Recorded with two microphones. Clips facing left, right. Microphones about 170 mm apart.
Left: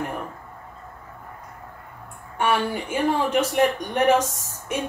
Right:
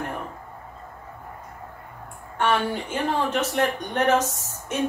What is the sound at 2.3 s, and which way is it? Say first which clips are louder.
A woman's voice: even; 10° left (ahead or behind).